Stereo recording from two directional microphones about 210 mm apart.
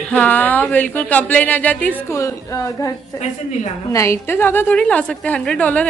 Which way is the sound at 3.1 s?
35° left (ahead or behind).